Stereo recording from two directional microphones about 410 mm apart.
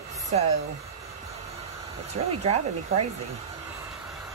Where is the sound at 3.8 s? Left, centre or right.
Centre.